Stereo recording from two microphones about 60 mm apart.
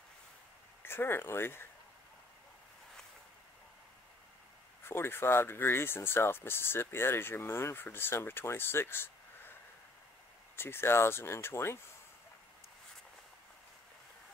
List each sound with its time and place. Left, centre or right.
0.8 s speech: left
4.8 s speech: left